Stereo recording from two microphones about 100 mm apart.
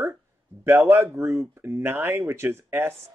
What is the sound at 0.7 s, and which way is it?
Speech, 25° right (ahead or behind).